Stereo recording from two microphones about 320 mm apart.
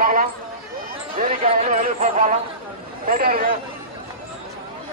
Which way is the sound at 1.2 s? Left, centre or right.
Right.